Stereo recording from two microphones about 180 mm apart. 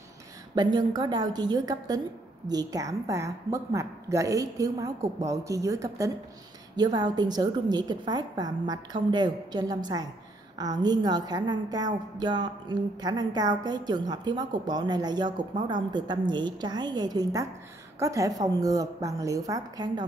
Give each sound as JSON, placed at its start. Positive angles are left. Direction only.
{"t": 0.6, "sound": "a woman's voice", "side_deg": -25}